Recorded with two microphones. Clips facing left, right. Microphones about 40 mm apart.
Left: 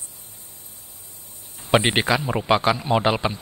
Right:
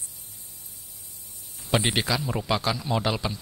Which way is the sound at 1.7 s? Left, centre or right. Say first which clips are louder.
Left 6 dB; left.